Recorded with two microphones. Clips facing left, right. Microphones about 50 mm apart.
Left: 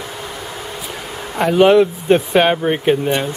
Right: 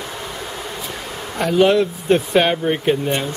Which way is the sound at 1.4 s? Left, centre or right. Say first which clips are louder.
Left 4 dB; left.